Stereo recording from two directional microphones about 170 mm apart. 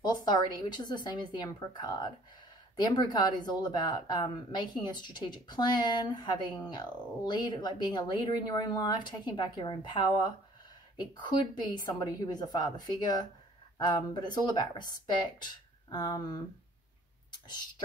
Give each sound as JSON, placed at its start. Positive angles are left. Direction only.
{"t": 0.0, "sound": "speech", "side_deg": 25}